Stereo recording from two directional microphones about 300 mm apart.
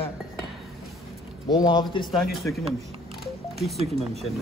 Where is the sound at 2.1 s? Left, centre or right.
Centre.